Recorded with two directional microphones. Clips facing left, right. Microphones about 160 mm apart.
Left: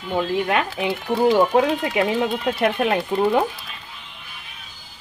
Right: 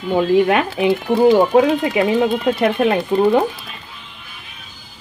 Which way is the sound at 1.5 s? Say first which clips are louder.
Right 5 dB; 5° right (ahead or behind).